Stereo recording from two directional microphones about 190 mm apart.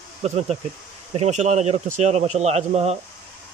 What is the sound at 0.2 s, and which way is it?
Speech, 35° right (ahead or behind).